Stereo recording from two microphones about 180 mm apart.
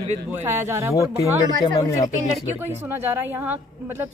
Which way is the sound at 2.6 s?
10° right (ahead or behind).